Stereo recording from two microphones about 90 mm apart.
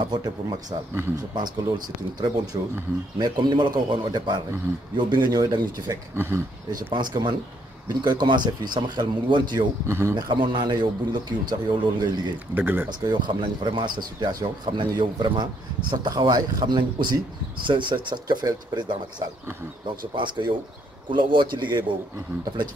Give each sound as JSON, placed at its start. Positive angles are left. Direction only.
{"t": 0.0, "sound": "speech", "side_deg": -60}
{"t": 6.1, "sound": "speech", "side_deg": -25}
{"t": 6.7, "sound": "speech", "side_deg": -55}
{"t": 9.8, "sound": "speech", "side_deg": -30}
{"t": 10.1, "sound": "speech", "side_deg": -55}
{"t": 12.5, "sound": "speech", "side_deg": -20}
{"t": 13.0, "sound": "speech", "side_deg": -55}